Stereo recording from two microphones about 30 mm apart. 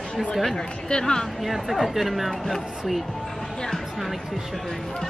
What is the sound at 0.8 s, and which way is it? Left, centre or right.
Speech, left.